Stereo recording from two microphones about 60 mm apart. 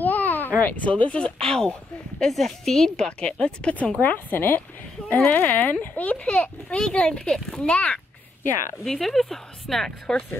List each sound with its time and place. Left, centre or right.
0.0 s a sound: left
0.6 s speech: left; by 3.1 s centre
3.1 s speech: centre
4.0 s a woman's voice: left
8.8 s a woman's voice: centre